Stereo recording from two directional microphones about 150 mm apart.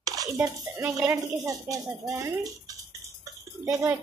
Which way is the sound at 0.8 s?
20° right (ahead or behind).